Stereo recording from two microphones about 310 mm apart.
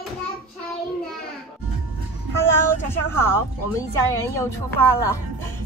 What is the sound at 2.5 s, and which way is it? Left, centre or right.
Vehicle, centre.